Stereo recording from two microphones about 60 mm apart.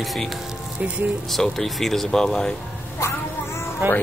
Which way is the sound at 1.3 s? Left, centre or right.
Centre.